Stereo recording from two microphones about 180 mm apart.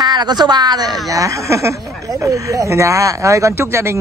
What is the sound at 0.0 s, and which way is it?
A woman's voice, 25° right (ahead or behind).